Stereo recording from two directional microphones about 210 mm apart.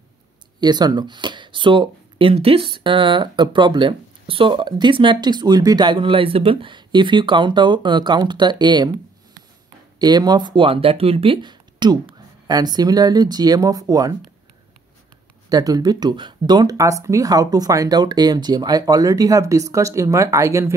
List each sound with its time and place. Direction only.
0.6 s speech: 20° right (ahead or behind)
9.9 s speech: 20° right (ahead or behind)
15.5 s speech: 15° right (ahead or behind)